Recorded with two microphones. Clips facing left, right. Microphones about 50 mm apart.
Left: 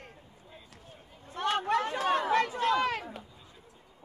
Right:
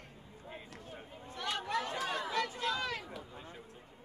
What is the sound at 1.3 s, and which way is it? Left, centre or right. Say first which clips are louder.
Chatter: left 8 dB; left.